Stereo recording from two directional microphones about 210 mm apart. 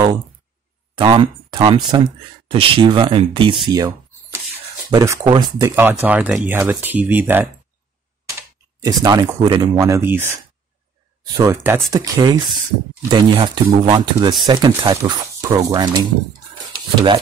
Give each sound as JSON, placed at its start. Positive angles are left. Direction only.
{"t": 0.9, "sound": "speech", "side_deg": -25}
{"t": 3.6, "sound": "a sound", "side_deg": -15}
{"t": 4.9, "sound": "speech", "side_deg": -15}
{"t": 9.0, "sound": "speech", "side_deg": -20}
{"t": 11.3, "sound": "speech", "side_deg": -15}